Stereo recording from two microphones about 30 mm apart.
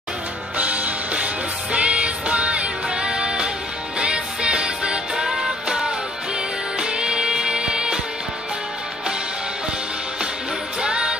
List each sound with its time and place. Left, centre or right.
0.6 s music: right
5.1 s music: centre
6.8 s music: right
10.8 s music: right